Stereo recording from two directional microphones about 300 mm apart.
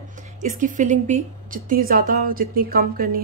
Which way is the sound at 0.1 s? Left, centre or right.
Right.